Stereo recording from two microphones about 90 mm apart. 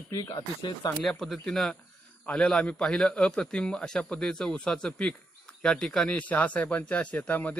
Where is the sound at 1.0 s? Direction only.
5° left (ahead or behind).